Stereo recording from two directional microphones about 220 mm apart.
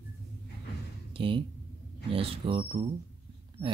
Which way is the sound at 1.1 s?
25° right (ahead or behind).